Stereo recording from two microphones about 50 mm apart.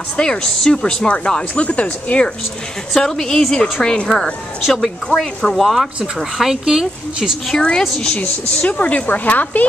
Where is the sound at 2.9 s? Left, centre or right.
Centre.